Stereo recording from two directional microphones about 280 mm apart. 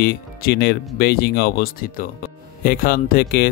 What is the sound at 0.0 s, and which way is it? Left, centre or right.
Speech, left.